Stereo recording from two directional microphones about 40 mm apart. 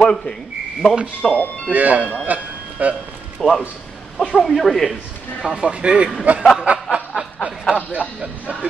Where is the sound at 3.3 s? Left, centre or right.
Centre.